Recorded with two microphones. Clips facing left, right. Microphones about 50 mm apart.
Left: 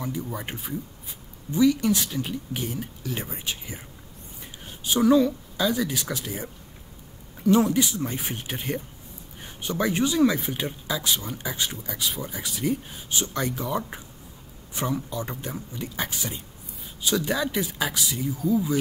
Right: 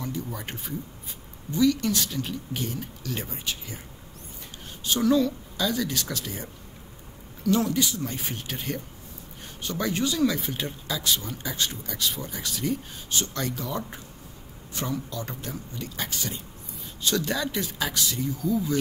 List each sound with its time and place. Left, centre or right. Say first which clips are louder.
0.0 s speech: left 2 dB; centre
4.8 s speech: left 3 dB; centre